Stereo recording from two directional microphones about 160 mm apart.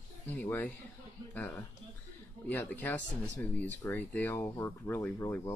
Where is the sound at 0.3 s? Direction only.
10° left (ahead or behind).